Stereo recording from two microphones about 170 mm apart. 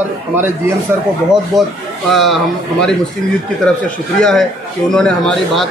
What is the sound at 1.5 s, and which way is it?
Speech, centre (ahead or behind).